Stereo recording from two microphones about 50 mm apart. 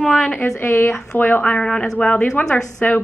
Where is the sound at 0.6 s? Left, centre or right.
Left.